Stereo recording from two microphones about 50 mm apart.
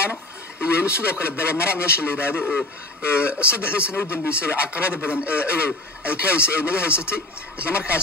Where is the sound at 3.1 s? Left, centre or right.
Left.